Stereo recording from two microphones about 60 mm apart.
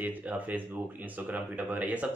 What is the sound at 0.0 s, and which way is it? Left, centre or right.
Speech, right.